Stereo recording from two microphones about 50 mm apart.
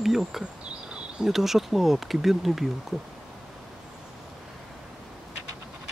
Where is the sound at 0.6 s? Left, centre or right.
Centre.